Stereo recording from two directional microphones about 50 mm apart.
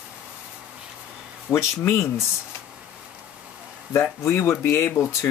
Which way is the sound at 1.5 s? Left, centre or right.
Left.